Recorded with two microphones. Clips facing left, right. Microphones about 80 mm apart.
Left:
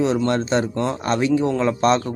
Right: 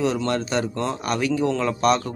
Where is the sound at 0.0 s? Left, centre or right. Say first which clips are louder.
Left 3 dB; left.